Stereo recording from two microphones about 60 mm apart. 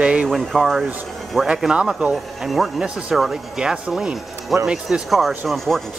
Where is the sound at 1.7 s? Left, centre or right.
Centre.